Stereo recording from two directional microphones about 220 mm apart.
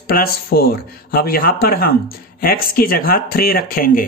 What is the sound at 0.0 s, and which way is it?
Speech, 45° left (ahead or behind).